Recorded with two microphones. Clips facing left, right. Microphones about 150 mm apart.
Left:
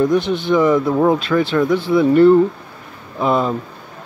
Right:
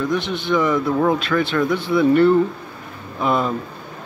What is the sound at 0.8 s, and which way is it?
Speech, 20° left (ahead or behind).